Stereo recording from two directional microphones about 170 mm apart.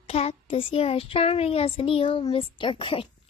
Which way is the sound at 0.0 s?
35° left (ahead or behind).